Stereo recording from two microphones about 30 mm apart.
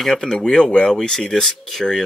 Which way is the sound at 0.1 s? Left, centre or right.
Left.